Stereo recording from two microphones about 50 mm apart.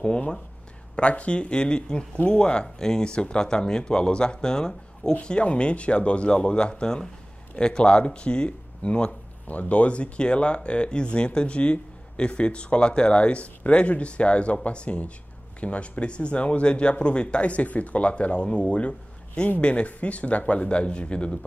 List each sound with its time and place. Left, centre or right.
0.0 s speech: left